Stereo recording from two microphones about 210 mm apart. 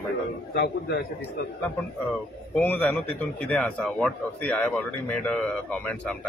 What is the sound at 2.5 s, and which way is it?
A man's voice, 10° left (ahead or behind).